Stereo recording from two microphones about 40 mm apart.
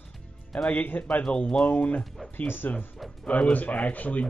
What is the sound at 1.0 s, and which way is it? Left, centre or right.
Speech, left.